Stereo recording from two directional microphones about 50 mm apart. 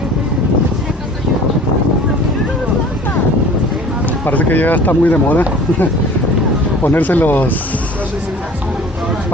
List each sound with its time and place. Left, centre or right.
4.0 s speech: left
6.8 s speech: left